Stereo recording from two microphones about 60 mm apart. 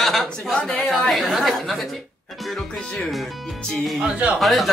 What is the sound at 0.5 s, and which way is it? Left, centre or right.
Speech, centre.